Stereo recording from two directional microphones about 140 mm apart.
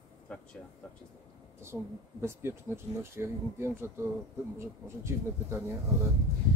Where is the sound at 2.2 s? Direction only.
15° right (ahead or behind).